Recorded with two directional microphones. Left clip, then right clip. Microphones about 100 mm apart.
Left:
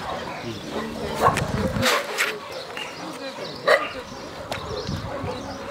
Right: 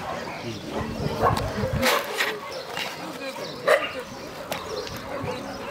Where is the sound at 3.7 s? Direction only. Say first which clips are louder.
Left 2 dB; 15° left (ahead or behind).